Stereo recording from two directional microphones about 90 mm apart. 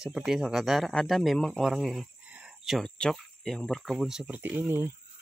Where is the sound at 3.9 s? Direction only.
5° right (ahead or behind).